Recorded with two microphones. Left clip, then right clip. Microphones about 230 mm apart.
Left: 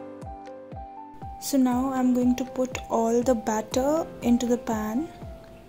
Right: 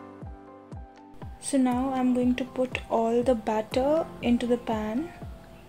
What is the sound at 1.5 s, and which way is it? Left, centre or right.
Speech, centre.